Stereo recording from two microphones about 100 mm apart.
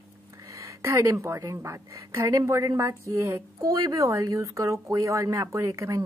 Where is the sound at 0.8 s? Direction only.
30° right (ahead or behind).